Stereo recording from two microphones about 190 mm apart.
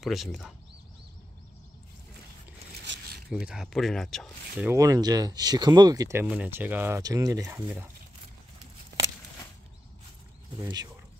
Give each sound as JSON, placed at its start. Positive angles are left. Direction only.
{"t": 0.0, "sound": "speech", "side_deg": 0}
{"t": 2.9, "sound": "zipper", "side_deg": -75}
{"t": 3.3, "sound": "speech", "side_deg": -5}
{"t": 4.6, "sound": "speech", "side_deg": -15}
{"t": 10.6, "sound": "speech", "side_deg": -20}